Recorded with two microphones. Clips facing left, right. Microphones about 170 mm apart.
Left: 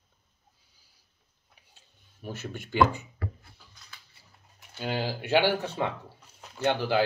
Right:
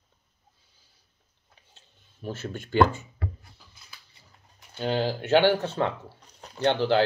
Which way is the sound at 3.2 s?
25° right (ahead or behind).